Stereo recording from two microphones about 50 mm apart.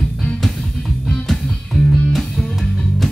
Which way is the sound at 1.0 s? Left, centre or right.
Centre.